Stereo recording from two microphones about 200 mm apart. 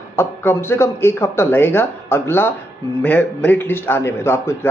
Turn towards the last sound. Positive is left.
turn(degrees=10)  # may be behind; listen again after turning